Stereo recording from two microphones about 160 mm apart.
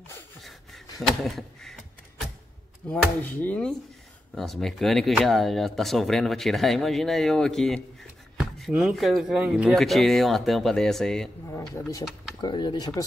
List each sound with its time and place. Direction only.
1.2 s a sound: centre (ahead or behind)
2.9 s speech: 10° left (ahead or behind)
12.4 s speech: 25° left (ahead or behind)